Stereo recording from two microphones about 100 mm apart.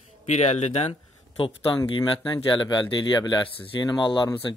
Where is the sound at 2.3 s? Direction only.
50° left (ahead or behind).